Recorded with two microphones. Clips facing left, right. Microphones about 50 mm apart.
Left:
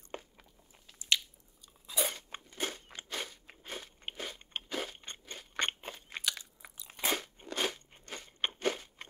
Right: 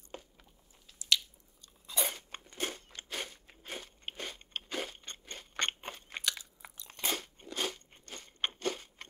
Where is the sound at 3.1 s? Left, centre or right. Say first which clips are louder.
Even; centre.